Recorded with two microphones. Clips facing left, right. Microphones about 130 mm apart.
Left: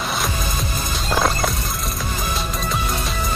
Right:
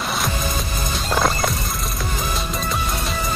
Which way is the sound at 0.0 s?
Centre (ahead or behind).